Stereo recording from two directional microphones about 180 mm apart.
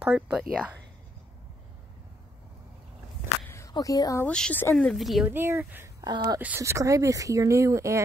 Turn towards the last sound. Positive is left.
turn(degrees=-15)  # may be behind; listen again after turning